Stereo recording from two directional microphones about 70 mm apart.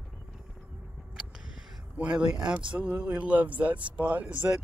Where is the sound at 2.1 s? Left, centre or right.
Centre.